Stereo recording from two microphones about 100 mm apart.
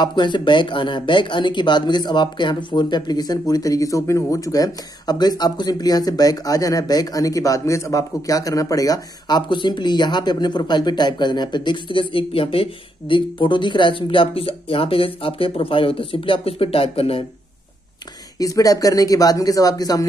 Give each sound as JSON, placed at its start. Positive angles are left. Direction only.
{"t": 0.0, "sound": "speech", "side_deg": 50}
{"t": 13.1, "sound": "speech", "side_deg": 55}
{"t": 18.4, "sound": "speech", "side_deg": 35}